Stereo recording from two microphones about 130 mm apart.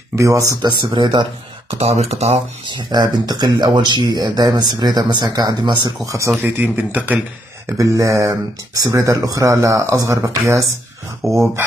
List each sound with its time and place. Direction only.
0.1 s speech: 25° right (ahead or behind)
1.7 s speech: 50° right (ahead or behind)
2.6 s speech: 35° right (ahead or behind)
6.0 s speech: 25° right (ahead or behind)
6.4 s speech: 15° right (ahead or behind)
7.7 s speech: 25° right (ahead or behind)
11.2 s speech: centre (ahead or behind)